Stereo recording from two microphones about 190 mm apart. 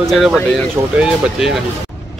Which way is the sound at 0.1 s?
Centre (ahead or behind).